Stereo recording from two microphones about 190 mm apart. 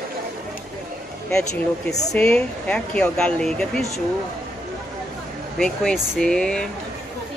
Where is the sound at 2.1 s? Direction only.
5° left (ahead or behind).